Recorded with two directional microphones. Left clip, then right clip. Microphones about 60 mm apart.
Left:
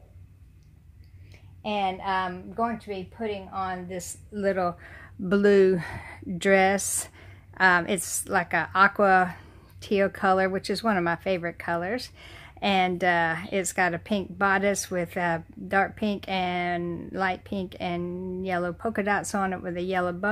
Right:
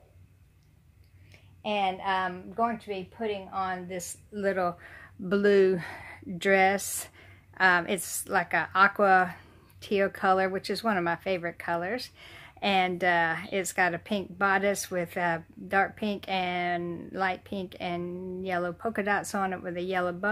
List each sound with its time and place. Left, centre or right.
1.6 s a woman's voice: left; by 3.7 s centre
3.9 s speech: left
5.3 s a woman's voice: left
17.2 s a woman's voice: left